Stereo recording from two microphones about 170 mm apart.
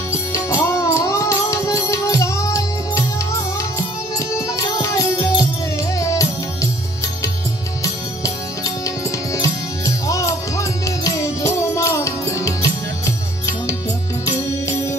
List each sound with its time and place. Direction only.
0.3 s music: 15° left (ahead or behind)
4.4 s music: 20° left (ahead or behind)
7.8 s music: 20° left (ahead or behind)